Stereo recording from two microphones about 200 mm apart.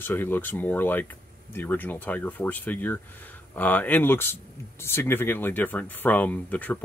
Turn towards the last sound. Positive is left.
turn(degrees=10)  # may be behind; listen again after turning